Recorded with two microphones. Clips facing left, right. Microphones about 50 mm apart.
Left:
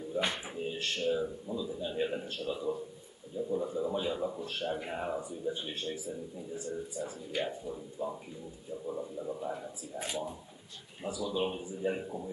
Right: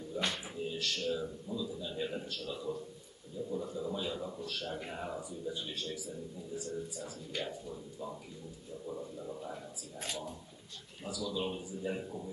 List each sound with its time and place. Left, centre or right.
0.1 s a man's voice: left
2.5 s a man's voice: centre
11.1 s a man's voice: left